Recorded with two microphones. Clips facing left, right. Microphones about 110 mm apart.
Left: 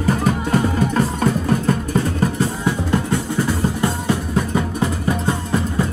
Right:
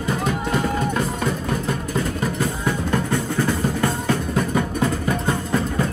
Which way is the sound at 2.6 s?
15° left (ahead or behind).